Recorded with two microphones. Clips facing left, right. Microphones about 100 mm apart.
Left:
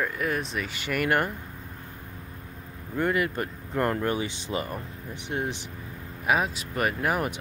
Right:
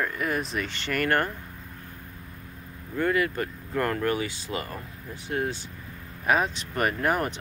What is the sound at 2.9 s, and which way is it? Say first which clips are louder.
Speech: right 1 dB; 20° left (ahead or behind).